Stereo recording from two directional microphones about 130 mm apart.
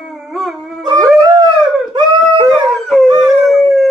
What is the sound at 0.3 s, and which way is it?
Dog, centre (ahead or behind).